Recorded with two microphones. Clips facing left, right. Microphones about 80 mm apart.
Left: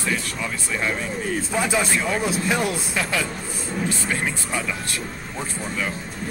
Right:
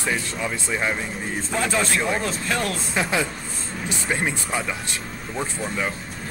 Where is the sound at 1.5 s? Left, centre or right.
Centre.